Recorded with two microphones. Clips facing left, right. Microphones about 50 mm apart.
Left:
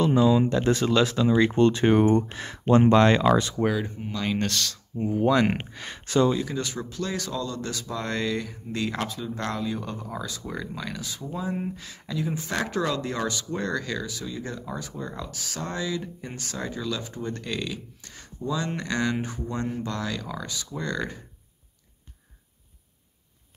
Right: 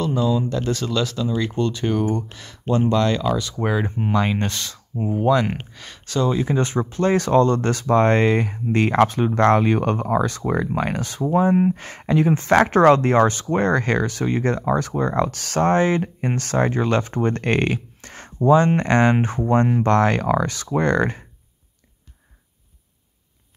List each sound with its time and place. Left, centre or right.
0.0 s speech: centre
3.8 s speech: right
4.5 s speech: centre
5.5 s speech: centre
6.3 s speech: right